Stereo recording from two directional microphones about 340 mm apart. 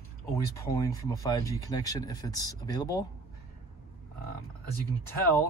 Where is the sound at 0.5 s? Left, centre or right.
Centre.